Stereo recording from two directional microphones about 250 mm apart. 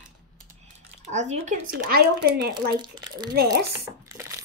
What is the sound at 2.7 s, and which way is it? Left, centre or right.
Speech, centre.